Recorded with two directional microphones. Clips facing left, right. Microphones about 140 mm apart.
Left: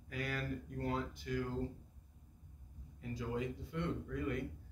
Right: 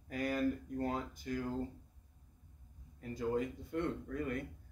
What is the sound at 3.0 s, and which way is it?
Speech, 45° right (ahead or behind).